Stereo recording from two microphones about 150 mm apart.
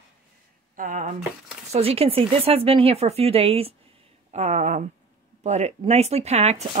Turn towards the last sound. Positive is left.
turn(degrees=-45)  # may be behind; listen again after turning